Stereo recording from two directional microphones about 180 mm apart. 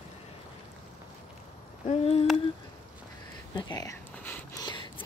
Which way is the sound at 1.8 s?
35° left (ahead or behind).